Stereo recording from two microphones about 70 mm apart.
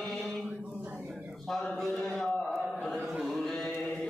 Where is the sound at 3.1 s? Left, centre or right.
Centre.